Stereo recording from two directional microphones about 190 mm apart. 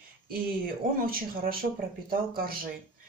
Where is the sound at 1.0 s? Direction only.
50° right (ahead or behind).